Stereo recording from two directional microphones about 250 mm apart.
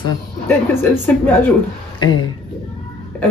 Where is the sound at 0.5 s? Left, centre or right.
Centre.